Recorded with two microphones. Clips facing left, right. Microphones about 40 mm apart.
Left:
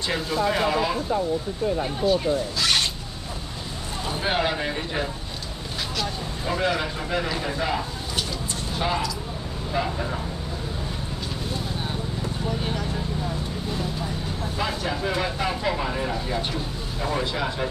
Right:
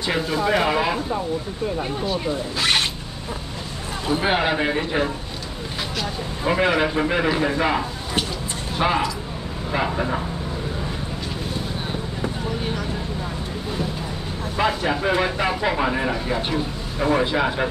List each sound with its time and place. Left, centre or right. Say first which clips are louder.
0.7 s speech: right 2 dB; right
1.8 s speech: left 2 dB; centre
2.6 s a sound: right 4 dB; right
4.1 s speech: right 4 dB; centre
6.4 s speech: right 6 dB; right
14.6 s speech: right 7 dB; right